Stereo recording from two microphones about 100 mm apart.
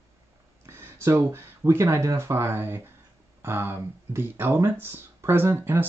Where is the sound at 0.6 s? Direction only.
25° right (ahead or behind).